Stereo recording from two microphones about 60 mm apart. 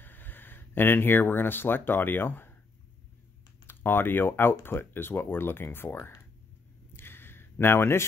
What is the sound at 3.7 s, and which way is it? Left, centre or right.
Speech, left.